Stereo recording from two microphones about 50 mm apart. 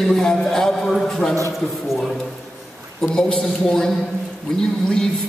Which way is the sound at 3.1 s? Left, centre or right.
Centre.